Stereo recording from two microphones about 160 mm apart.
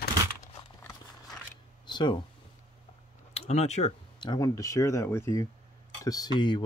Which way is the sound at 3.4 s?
45° left (ahead or behind).